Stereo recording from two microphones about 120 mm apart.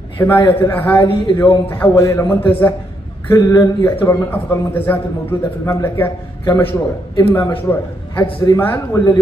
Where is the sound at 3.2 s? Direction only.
25° left (ahead or behind).